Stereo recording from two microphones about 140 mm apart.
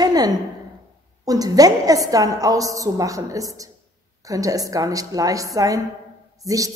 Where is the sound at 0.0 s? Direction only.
25° right (ahead or behind).